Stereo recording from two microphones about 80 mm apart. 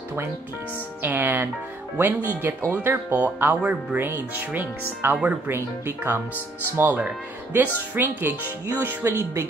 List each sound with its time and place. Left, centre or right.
1.0 s speech: right
5.5 s speech: right